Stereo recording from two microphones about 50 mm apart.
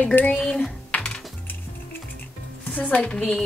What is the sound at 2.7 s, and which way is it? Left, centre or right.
Speech, left.